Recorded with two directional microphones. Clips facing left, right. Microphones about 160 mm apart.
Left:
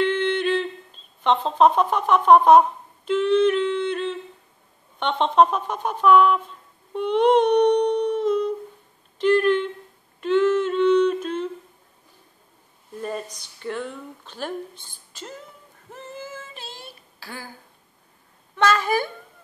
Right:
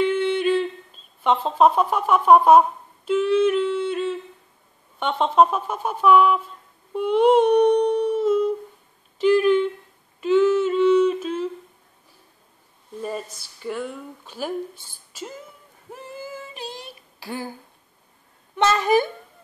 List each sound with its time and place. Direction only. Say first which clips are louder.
0.0 s humming: right 1 dB; 5° right (ahead or behind)
1.2 s speech: even; 5° right (ahead or behind)
3.1 s singing: even; 5° right (ahead or behind)
4.9 s speech: even; 5° right (ahead or behind)
6.9 s humming: right 1 dB; 5° right (ahead or behind)
9.2 s speech: right 2 dB; 5° right (ahead or behind)
10.2 s humming: right 2 dB; 5° right (ahead or behind)
13.0 s speech: even; 5° right (ahead or behind)
15.9 s a sound: right 1 dB; 10° right (ahead or behind)
18.6 s speech: right 2 dB; 20° right (ahead or behind)